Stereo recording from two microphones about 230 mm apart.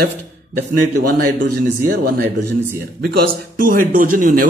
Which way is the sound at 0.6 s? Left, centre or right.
Right.